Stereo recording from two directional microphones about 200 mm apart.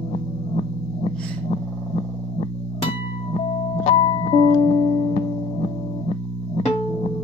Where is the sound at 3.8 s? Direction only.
30° left (ahead or behind).